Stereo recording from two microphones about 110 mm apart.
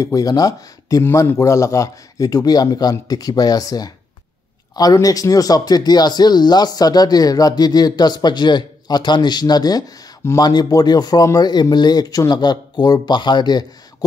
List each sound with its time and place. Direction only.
0.0 s speech: 30° left (ahead or behind)
1.0 s speech: 25° left (ahead or behind); by 13.7 s 40° left (ahead or behind)